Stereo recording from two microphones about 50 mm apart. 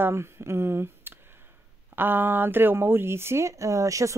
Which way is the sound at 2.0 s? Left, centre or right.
Right.